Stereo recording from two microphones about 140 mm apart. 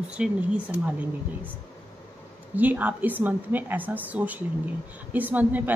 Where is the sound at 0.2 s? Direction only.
10° right (ahead or behind).